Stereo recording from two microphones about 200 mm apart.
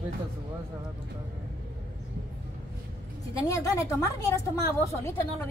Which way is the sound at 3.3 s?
15° left (ahead or behind).